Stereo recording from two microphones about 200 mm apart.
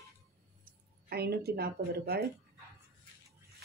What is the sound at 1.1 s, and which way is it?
A woman's voice, 50° right (ahead or behind).